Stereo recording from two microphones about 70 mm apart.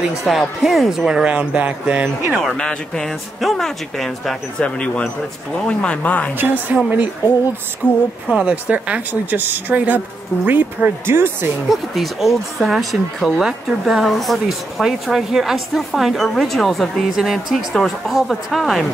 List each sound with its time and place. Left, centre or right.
0.2 s speech: centre
2.4 s speech: centre
4.6 s speech: centre
6.7 s speech: right
7.8 s speech: centre
8.3 s speech: centre
11.1 s speech: right
11.7 s speech: centre